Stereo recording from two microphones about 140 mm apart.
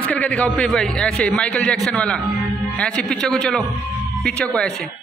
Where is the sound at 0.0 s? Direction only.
10° left (ahead or behind).